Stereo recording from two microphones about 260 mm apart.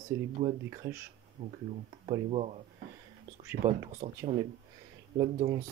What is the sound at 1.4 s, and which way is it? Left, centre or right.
Speech, right.